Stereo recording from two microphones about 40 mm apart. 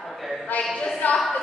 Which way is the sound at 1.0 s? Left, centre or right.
Left.